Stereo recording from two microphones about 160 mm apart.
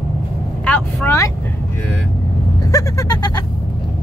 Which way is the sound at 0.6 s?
10° left (ahead or behind).